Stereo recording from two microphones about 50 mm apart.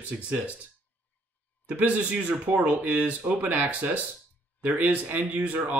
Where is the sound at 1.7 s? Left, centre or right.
Right.